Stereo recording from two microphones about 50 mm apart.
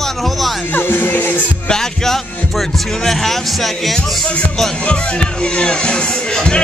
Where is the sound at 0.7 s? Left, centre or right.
Left.